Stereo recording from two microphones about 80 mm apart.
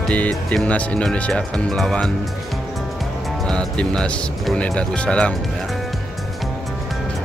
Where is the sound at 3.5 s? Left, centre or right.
Centre.